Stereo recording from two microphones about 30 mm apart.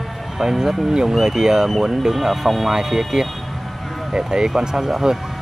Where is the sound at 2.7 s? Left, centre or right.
Centre.